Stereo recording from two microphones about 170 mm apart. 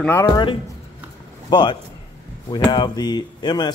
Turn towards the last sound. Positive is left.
turn(degrees=25)  # may be behind; listen again after turning